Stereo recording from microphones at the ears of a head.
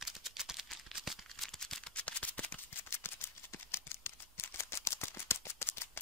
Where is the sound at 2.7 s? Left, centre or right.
Left.